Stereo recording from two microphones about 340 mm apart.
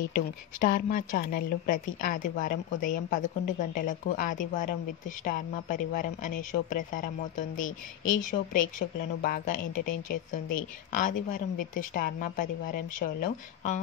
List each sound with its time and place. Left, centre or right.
0.6 s a woman's voice: left